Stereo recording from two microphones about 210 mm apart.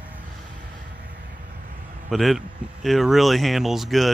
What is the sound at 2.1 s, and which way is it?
Speech, centre (ahead or behind).